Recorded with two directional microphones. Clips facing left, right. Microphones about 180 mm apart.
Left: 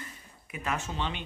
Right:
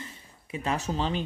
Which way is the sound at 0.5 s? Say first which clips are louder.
Right 4 dB; 30° right (ahead or behind).